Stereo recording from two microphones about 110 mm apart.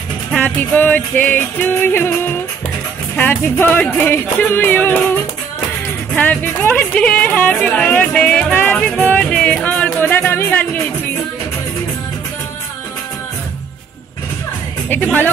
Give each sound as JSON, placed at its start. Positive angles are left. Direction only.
{"t": 0.4, "sound": "music", "side_deg": 15}
{"t": 3.2, "sound": "speech", "side_deg": 20}
{"t": 6.1, "sound": "music", "side_deg": 15}